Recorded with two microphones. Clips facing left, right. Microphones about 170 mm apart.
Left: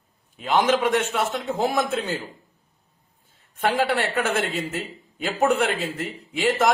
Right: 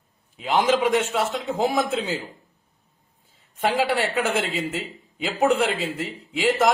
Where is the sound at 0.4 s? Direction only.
5° right (ahead or behind).